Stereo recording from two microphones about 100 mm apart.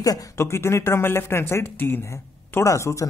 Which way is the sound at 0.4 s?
25° left (ahead or behind).